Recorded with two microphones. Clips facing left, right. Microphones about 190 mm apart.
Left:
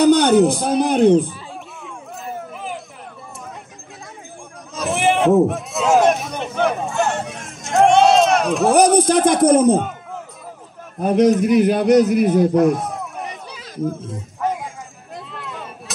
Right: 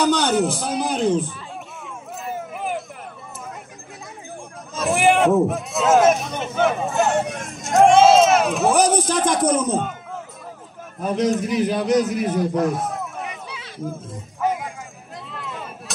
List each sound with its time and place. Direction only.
0.0 s a man's voice: 60° left (ahead or behind)
2.5 s vehicle: 55° right (ahead or behind)
4.7 s a sound: centre (ahead or behind)
8.7 s speech: 60° left (ahead or behind)
11.0 s speech: 60° left (ahead or behind)
12.5 s speech: centre (ahead or behind)
13.3 s a sound: 40° left (ahead or behind)
14.4 s music: centre (ahead or behind)
15.3 s a sound: centre (ahead or behind)